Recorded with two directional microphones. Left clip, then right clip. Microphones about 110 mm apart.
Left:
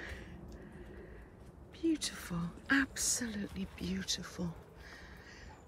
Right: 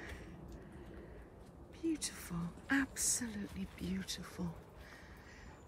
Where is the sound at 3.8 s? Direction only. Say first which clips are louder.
Left 6 dB; 20° right (ahead or behind).